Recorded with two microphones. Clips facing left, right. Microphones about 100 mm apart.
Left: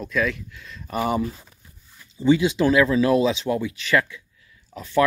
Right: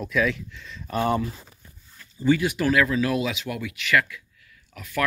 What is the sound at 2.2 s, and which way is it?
Speech, 20° left (ahead or behind).